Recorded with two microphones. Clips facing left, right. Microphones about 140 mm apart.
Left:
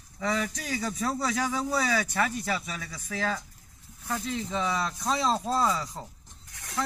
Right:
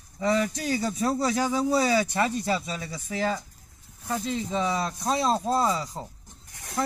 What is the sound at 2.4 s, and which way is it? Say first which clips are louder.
Speech: right 4 dB; 30° right (ahead or behind).